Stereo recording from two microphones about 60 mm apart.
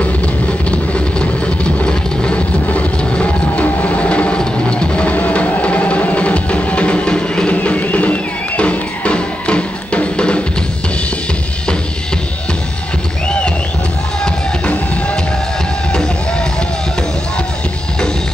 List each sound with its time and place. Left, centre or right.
0.7 s vehicle: centre